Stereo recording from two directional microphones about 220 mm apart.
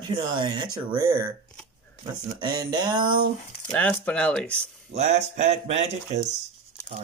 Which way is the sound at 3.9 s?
5° left (ahead or behind).